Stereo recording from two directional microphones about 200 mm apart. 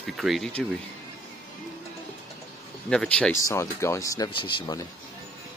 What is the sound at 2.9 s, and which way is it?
A man's voice, 5° left (ahead or behind).